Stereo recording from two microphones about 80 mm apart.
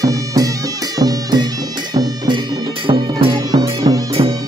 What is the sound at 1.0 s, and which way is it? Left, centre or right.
Music, right.